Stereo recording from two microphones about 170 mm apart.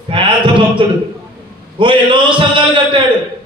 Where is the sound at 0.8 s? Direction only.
30° right (ahead or behind).